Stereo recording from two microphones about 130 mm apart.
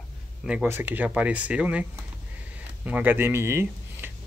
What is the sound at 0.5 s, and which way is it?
Speech, 15° right (ahead or behind).